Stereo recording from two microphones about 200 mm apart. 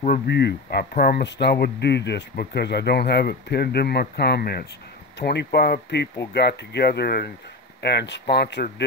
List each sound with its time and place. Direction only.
0.0 s speech: 50° left (ahead or behind)